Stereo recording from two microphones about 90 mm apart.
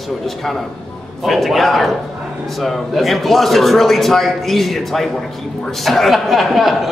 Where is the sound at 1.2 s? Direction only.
Centre (ahead or behind).